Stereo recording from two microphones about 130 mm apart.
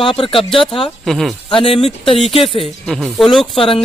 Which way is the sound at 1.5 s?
45° left (ahead or behind).